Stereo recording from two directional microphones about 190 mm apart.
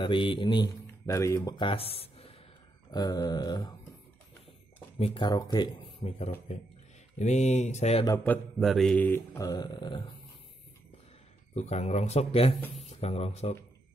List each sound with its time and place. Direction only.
0.0 s speech: 25° left (ahead or behind)
2.9 s speech: 20° left (ahead or behind)
4.9 s speech: 30° left (ahead or behind)
8.2 s mantra: 5° left (ahead or behind); by 10.1 s 25° left (ahead or behind)
11.5 s speech: 35° left (ahead or behind)